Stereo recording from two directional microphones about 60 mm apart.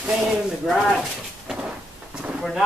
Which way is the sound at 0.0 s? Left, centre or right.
Centre.